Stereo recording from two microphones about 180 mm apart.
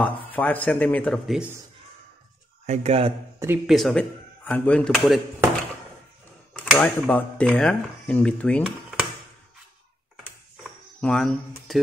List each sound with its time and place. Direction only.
0.0 s speech: 10° left (ahead or behind)
2.6 s speech: 35° right (ahead or behind)
3.3 s speech: 10° right (ahead or behind)
3.6 s speech: centre (ahead or behind)
6.5 s speech: 5° left (ahead or behind)
11.0 s speech: 5° left (ahead or behind)